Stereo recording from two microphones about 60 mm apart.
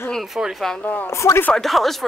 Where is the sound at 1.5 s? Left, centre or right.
Centre.